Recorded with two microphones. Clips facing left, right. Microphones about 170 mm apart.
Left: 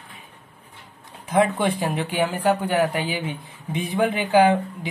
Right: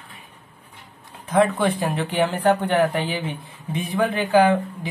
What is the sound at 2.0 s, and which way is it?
Speech, 10° left (ahead or behind).